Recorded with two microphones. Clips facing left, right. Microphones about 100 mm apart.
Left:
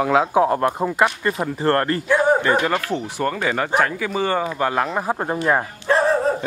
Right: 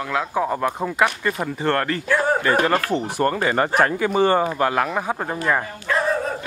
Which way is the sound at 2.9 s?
10° right (ahead or behind).